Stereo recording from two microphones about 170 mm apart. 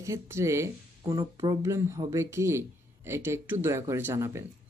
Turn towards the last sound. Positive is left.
turn(degrees=-15)  # may be behind; listen again after turning